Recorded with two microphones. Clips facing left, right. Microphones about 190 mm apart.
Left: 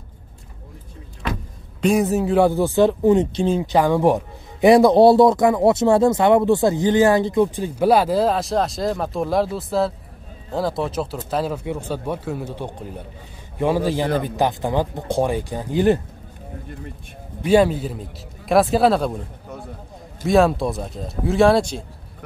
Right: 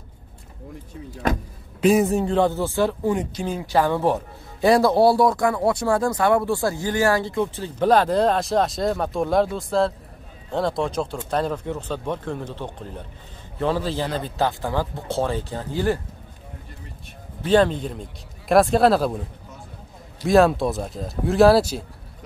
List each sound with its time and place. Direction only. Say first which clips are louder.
1.2 s a sound: right 4 dB; 45° right (ahead or behind)
1.8 s speech: even; centre (ahead or behind); by 16.0 s 20° left (ahead or behind)
17.4 s speech: left 2 dB; 10° left (ahead or behind)
20.2 s speech: even; centre (ahead or behind)